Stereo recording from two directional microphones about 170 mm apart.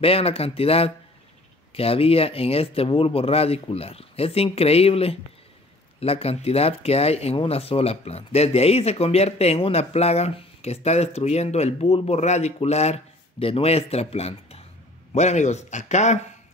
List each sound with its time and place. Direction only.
0.0 s speech: 35° left (ahead or behind)